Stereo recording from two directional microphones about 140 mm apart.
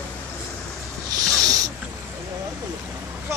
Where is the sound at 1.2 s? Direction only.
25° right (ahead or behind).